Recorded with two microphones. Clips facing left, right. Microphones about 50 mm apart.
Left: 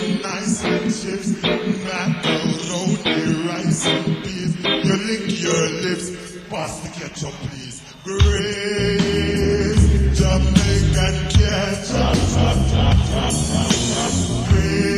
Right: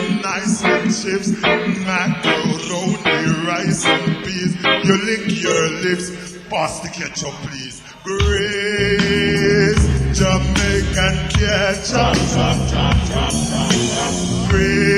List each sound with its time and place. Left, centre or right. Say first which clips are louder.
0.0 s music: right 3 dB; right
3.1 s music: right 4 dB; right
8.1 s music: right 3 dB; right
8.9 s music: right 3 dB; right
13.2 s music: right 2 dB; right
14.3 s music: right 4 dB; right